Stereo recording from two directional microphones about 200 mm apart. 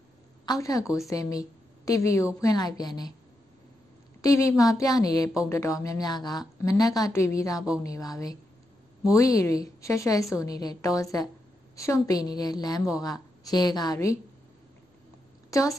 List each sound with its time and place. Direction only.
0.5 s a woman's voice: 20° left (ahead or behind)
4.2 s a woman's voice: 15° left (ahead or behind)
15.5 s a woman's voice: 15° left (ahead or behind)